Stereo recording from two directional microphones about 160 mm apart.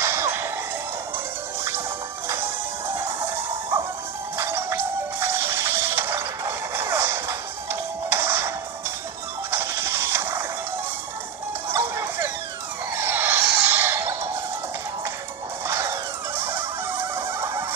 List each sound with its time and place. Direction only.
0.0 s whip: 15° right (ahead or behind)
2.2 s music: 15° right (ahead or behind)
4.4 s music: 15° right (ahead or behind)
11.7 s music: 15° right (ahead or behind)
12.9 s a sound: 10° right (ahead or behind)
15.6 s music: 15° right (ahead or behind)